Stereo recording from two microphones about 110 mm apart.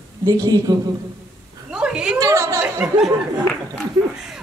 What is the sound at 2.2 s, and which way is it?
Chatter, 25° right (ahead or behind).